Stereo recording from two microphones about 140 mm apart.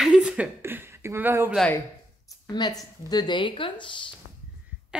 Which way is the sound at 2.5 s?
30° left (ahead or behind).